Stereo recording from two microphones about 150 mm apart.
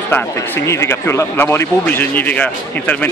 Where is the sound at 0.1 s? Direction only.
15° left (ahead or behind).